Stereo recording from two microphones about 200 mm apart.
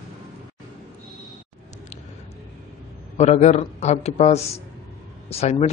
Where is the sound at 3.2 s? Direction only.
35° left (ahead or behind).